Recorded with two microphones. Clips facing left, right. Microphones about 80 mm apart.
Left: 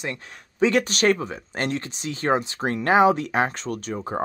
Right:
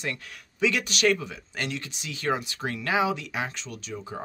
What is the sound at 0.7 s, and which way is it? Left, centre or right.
Speech, left.